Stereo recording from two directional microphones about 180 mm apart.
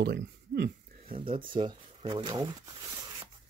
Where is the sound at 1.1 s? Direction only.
30° right (ahead or behind).